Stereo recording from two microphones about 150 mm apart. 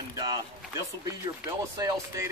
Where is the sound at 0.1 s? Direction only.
25° right (ahead or behind).